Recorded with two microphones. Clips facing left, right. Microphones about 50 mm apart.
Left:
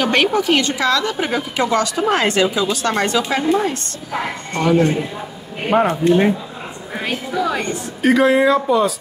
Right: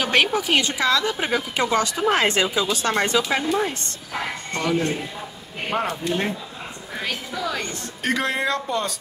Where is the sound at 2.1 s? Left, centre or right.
Centre.